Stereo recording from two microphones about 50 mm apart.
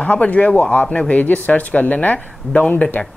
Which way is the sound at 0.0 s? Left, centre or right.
Left.